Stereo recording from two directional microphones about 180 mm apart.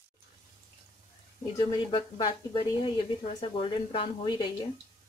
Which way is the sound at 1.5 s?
30° left (ahead or behind).